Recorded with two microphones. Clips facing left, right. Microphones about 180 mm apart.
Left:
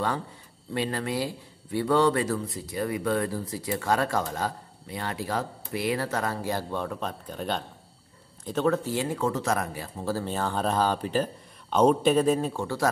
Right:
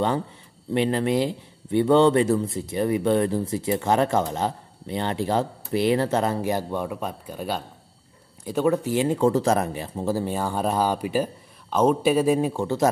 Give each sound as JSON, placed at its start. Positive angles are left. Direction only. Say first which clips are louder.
{"t": 0.7, "sound": "speech", "louder": "right 7 dB", "side_deg": -20}
{"t": 9.2, "sound": "speech", "louder": "right 8 dB", "side_deg": -30}